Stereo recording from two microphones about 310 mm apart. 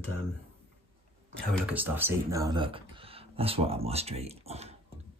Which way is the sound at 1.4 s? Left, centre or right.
Centre.